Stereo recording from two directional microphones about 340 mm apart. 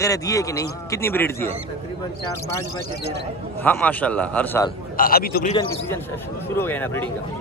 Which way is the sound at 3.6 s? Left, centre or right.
Centre.